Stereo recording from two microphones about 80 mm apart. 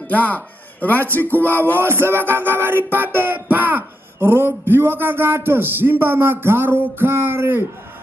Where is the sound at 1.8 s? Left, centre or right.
Right.